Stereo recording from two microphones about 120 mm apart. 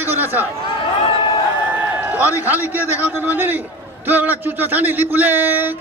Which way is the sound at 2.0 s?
15° right (ahead or behind).